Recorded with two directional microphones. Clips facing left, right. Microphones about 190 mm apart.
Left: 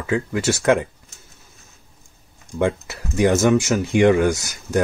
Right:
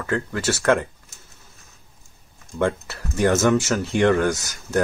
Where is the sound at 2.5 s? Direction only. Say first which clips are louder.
Left 2 dB; 10° left (ahead or behind).